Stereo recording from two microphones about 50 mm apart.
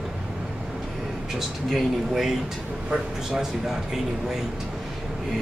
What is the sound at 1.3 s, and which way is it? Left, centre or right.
Speech, centre.